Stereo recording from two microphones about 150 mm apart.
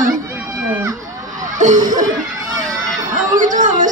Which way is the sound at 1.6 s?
60° right (ahead or behind).